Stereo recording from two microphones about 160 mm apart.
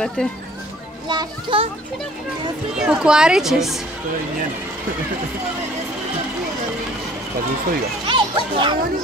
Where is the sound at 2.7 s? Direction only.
5° right (ahead or behind).